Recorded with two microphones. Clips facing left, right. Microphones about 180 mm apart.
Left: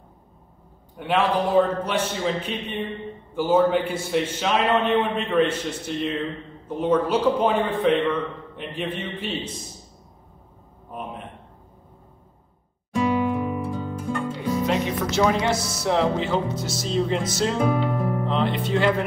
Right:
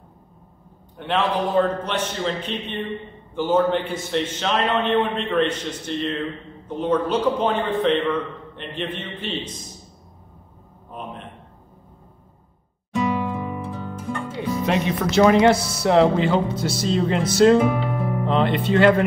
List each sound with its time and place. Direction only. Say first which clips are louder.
0.9 s a man's voice: left 1 dB; 10° left (ahead or behind)
10.9 s a sound: left 1 dB; 10° left (ahead or behind)
13.3 s music: left 3 dB; centre (ahead or behind)
14.7 s speech: right 2 dB; 65° right (ahead or behind)
17.6 s music: right 2 dB; 5° right (ahead or behind)
18.2 s speech: right 3 dB; 60° right (ahead or behind)